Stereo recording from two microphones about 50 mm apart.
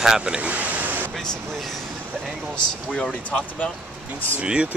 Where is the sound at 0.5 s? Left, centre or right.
Right.